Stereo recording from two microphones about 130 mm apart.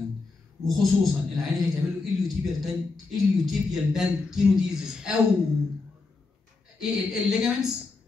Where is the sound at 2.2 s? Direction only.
Centre (ahead or behind).